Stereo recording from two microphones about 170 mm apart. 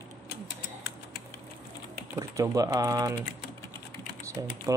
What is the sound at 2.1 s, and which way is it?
Speech, 20° right (ahead or behind).